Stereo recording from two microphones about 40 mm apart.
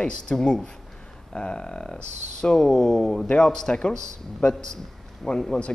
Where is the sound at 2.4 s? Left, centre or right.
Centre.